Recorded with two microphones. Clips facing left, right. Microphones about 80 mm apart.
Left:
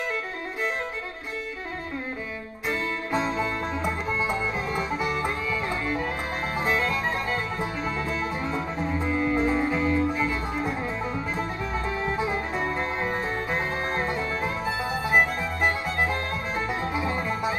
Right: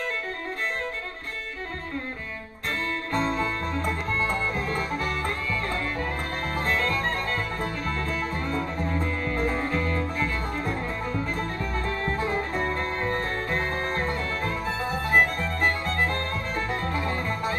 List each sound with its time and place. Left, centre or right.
3.1 s music: centre